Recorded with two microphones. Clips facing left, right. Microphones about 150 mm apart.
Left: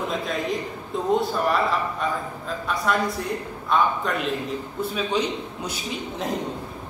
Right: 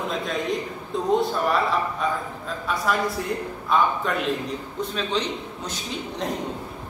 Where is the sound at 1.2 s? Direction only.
Centre (ahead or behind).